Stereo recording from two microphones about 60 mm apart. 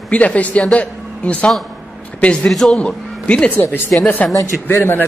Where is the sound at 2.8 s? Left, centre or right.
Centre.